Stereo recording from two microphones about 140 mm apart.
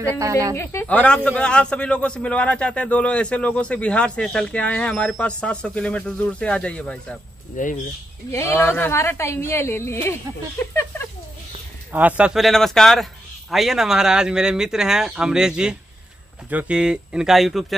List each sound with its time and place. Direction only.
0.2 s speech: 25° right (ahead or behind)
0.6 s a man's voice: 20° left (ahead or behind)
7.5 s speech: 65° left (ahead or behind)
8.3 s a man's voice: 20° left (ahead or behind)
10.6 s a sound: 20° left (ahead or behind)
11.9 s a man's voice: 10° right (ahead or behind)